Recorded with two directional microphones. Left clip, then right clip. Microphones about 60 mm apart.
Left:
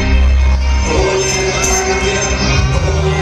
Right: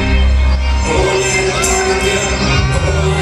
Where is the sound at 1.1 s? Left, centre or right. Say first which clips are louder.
Right 1 dB; centre.